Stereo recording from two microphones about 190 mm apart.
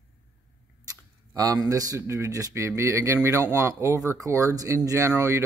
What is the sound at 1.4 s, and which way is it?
Speech, 20° right (ahead or behind).